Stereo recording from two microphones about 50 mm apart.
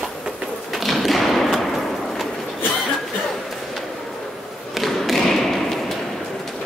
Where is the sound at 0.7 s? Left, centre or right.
Centre.